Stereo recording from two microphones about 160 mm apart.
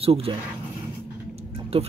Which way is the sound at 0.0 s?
35° right (ahead or behind).